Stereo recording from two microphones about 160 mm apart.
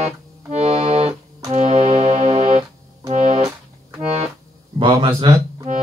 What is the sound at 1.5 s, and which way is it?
Keyboard, 45° right (ahead or behind).